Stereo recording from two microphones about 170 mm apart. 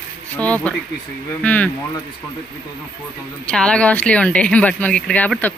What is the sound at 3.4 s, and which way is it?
Speech, 5° left (ahead or behind).